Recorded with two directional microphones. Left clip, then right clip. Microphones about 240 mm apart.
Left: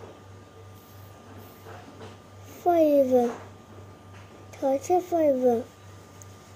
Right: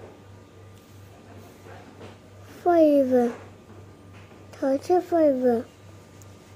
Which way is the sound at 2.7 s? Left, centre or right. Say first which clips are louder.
Right 2 dB; centre.